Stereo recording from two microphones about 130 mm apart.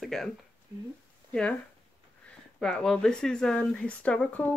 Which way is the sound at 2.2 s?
5° left (ahead or behind).